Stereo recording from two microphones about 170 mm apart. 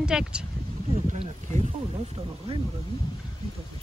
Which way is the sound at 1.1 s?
40° right (ahead or behind).